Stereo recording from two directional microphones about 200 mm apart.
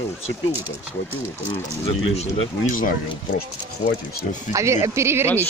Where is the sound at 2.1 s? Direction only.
35° left (ahead or behind).